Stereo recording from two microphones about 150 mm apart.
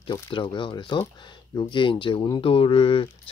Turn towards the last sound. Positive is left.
turn(degrees=35)  # may be behind; listen again after turning